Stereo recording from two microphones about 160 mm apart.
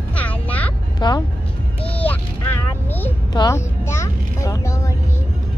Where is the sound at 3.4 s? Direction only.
20° left (ahead or behind).